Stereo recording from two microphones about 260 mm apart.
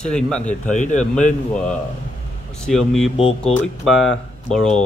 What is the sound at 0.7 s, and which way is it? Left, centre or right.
Speech, left.